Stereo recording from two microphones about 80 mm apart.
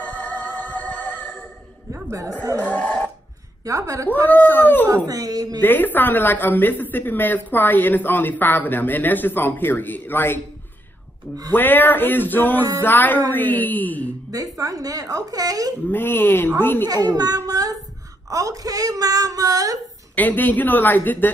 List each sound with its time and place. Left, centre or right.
0.0 s music: centre
2.0 s speech: right
2.6 s a sound: centre
3.6 s a woman's voice: right
4.1 s a woman's voice: left
5.0 s a woman's voice: right
5.6 s a woman's voice: left
11.5 s a woman's voice: left
14.3 s a woman's voice: right
15.9 s a woman's voice: left
16.8 s a woman's voice: right
20.2 s a woman's voice: left